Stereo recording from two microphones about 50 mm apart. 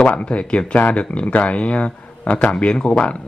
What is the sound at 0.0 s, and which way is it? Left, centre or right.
Speech, left.